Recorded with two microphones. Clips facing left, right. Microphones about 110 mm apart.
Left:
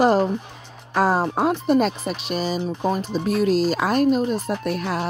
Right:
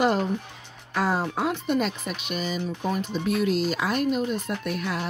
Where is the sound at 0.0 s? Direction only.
40° left (ahead or behind).